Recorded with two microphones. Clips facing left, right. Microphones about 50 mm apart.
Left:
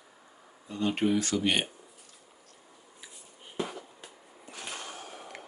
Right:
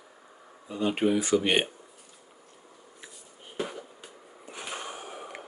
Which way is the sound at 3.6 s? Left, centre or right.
Centre.